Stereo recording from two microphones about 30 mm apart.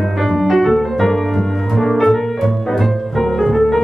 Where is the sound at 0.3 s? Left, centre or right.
Centre.